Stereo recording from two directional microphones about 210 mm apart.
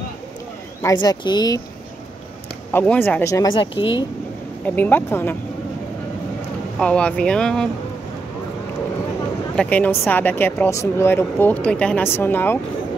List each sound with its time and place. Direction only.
1.0 s speech: 20° left (ahead or behind)
2.7 s speech: 10° left (ahead or behind); by 3.9 s 25° left (ahead or behind)
4.6 s speech: 10° left (ahead or behind)
6.8 s speech: 5° left (ahead or behind)
9.6 s speech: 5° left (ahead or behind)